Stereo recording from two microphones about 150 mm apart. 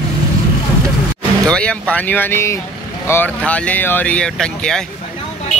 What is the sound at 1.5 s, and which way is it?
Speech, 10° left (ahead or behind).